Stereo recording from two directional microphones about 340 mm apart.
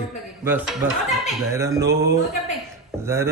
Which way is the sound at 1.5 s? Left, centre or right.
Centre.